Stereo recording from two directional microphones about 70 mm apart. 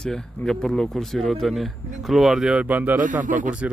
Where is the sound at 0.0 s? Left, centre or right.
Centre.